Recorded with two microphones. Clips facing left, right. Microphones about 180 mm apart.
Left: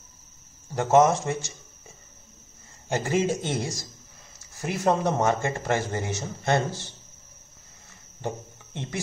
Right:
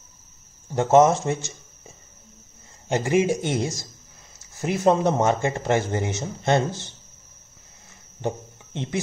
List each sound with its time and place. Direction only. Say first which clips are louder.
0.7 s speech: right 3 dB; 20° right (ahead or behind)
2.9 s a man's voice: right 4 dB; 15° right (ahead or behind)